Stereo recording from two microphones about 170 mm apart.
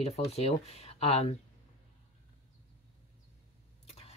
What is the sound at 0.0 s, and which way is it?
Speech, 35° left (ahead or behind).